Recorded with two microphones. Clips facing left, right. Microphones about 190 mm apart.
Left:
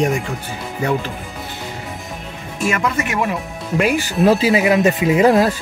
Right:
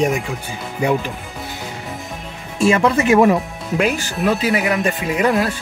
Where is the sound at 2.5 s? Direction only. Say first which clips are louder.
Right 5 dB; 30° right (ahead or behind).